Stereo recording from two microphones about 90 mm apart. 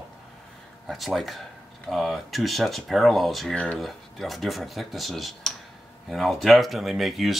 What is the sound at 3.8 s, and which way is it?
Speech, centre (ahead or behind).